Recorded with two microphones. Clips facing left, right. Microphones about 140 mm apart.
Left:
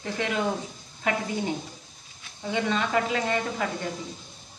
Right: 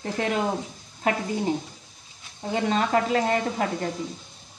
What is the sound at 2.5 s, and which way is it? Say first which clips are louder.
Speech: right 3 dB; 40° right (ahead or behind).